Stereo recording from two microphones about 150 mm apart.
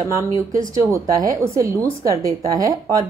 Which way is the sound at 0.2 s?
20° right (ahead or behind).